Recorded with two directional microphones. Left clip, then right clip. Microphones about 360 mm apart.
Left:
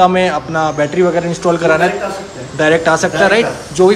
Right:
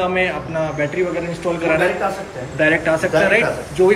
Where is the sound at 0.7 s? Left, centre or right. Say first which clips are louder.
Left 6 dB; left.